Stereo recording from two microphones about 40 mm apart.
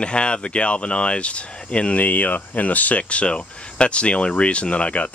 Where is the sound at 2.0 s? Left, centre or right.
Left.